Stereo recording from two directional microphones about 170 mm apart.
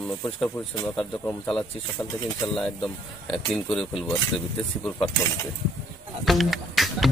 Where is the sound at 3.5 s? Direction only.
Centre (ahead or behind).